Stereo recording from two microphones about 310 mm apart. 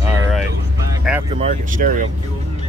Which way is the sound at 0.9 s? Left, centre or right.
Centre.